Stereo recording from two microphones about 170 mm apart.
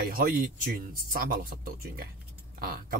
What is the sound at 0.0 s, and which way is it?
A man's voice, 60° right (ahead or behind).